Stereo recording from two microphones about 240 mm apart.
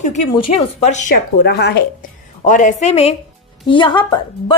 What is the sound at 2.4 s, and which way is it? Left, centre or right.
A woman's voice, left.